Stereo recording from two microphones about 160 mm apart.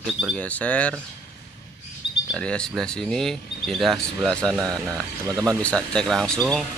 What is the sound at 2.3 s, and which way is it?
Speech, 5° left (ahead or behind).